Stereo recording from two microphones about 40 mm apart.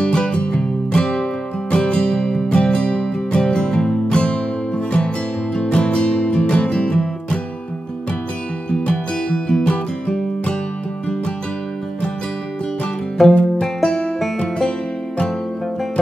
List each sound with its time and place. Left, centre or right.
0.0 s music: left
8.6 s music: left
13.2 s music: centre